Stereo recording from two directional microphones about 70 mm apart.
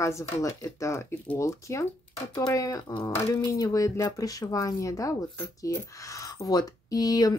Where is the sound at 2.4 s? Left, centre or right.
Left.